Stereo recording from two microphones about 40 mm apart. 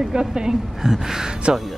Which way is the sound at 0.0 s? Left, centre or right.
Centre.